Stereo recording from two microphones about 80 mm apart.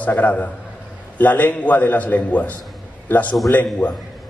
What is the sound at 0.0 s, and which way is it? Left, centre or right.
A man's voice, left.